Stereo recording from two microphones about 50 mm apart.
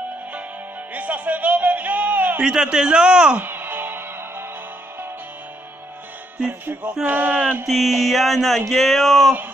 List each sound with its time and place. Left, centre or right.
0.9 s a sound: right
2.3 s a man's voice: centre
3.4 s music: right
6.6 s music: right
7.1 s speech: right
7.6 s a sound: centre